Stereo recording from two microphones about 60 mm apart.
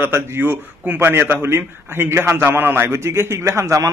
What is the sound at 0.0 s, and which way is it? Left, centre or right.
A man's voice, right.